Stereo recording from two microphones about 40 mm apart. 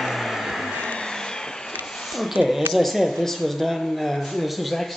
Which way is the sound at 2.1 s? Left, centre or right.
Centre.